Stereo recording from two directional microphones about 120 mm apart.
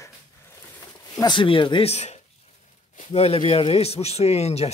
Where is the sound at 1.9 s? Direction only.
65° left (ahead or behind).